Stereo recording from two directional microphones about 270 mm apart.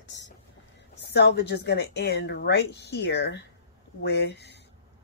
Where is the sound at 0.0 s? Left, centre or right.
Left.